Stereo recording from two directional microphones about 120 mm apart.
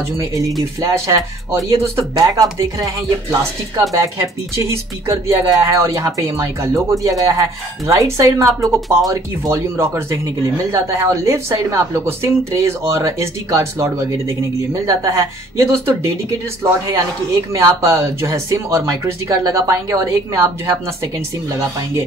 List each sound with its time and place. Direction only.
0.6 s speech: 25° right (ahead or behind)
17.5 s speech: 25° right (ahead or behind)